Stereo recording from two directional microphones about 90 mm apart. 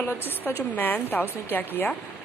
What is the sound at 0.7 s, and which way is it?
Speech, 20° left (ahead or behind).